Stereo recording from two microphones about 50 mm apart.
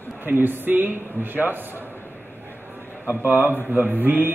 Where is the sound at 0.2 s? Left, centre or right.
Right.